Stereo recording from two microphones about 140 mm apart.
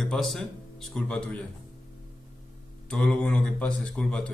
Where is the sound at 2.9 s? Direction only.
5° left (ahead or behind).